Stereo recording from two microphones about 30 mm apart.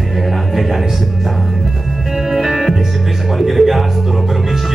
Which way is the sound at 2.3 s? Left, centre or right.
Centre.